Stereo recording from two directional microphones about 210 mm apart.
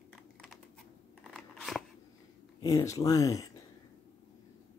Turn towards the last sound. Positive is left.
turn(degrees=15)  # may be behind; listen again after turning